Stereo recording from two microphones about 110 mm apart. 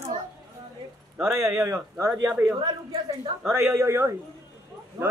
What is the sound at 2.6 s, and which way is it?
Speech, 40° right (ahead or behind).